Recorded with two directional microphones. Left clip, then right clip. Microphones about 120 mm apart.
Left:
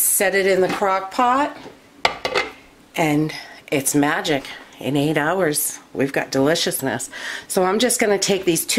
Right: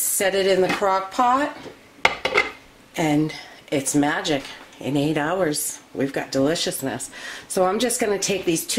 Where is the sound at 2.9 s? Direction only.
30° left (ahead or behind).